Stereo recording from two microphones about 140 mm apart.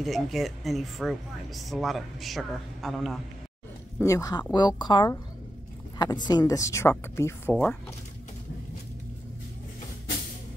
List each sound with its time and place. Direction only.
0.0 s speech: centre (ahead or behind)
4.0 s speech: 25° left (ahead or behind)